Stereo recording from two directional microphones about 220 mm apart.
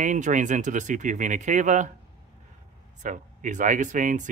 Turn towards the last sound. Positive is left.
turn(degrees=-35)  # may be behind; listen again after turning